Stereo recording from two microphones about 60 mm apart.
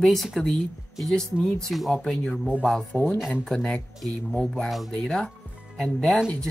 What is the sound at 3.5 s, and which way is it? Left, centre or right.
Speech, centre.